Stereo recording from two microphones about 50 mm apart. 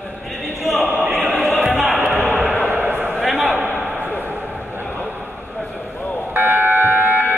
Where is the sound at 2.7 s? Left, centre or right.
Right.